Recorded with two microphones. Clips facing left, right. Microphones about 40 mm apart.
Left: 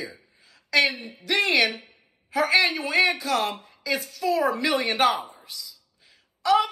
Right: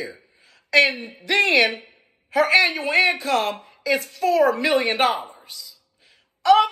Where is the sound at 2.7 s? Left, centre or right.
Right.